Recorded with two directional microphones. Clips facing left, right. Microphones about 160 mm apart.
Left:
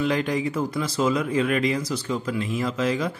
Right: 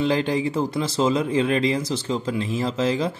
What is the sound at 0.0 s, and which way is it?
Speech, 30° right (ahead or behind).